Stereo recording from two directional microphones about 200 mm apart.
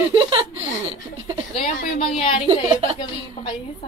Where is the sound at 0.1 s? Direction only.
25° right (ahead or behind).